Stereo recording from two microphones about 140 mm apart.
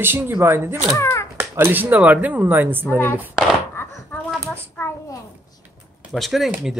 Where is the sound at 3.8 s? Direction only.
15° left (ahead or behind).